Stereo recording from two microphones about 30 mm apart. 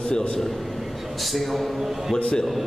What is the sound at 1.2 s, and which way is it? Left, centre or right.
Speech, centre.